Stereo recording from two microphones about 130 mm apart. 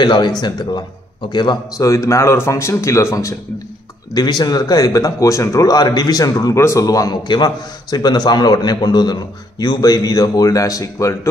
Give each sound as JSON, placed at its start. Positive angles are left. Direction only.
{"t": 0.0, "sound": "a man's voice", "side_deg": 40}
{"t": 4.1, "sound": "speech", "side_deg": 35}